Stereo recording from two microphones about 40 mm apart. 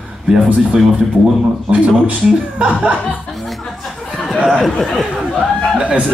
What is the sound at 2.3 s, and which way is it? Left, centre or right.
Speech, right.